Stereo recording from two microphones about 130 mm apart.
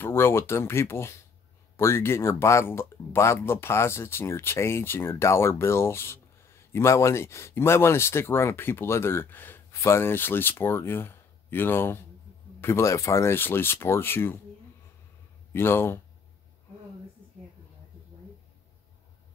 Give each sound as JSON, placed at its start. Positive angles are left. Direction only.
{"t": 0.0, "sound": "speech", "side_deg": 20}
{"t": 15.5, "sound": "speech", "side_deg": 20}